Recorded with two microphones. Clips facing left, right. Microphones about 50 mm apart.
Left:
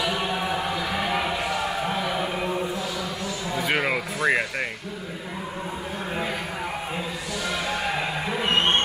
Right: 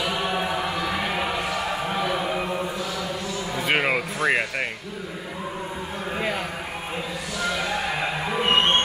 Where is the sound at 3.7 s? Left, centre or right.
Centre.